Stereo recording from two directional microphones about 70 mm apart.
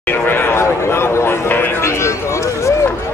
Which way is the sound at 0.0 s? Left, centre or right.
Left.